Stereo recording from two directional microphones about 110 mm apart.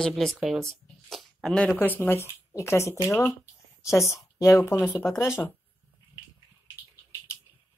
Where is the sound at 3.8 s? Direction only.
25° left (ahead or behind).